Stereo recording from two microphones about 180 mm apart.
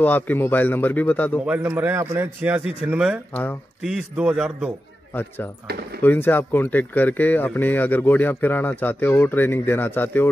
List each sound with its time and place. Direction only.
0.0 s speech: 10° left (ahead or behind)
1.4 s a man's voice: 10° right (ahead or behind)
5.7 s speech: 65° right (ahead or behind)
6.0 s speech: 10° left (ahead or behind)